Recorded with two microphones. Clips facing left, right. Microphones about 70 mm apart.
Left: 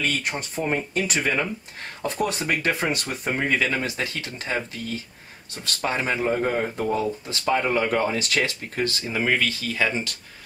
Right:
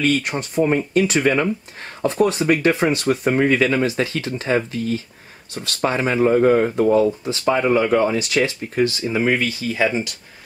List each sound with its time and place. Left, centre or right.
0.2 s speech: right
1.2 s speech: right; by 3.4 s centre
3.6 s speech: right